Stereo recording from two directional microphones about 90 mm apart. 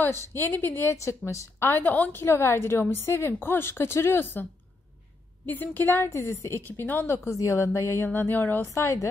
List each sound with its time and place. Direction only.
0.0 s a woman's voice: 25° left (ahead or behind)
5.5 s a woman's voice: 20° left (ahead or behind)
8.7 s a woman's voice: 35° left (ahead or behind)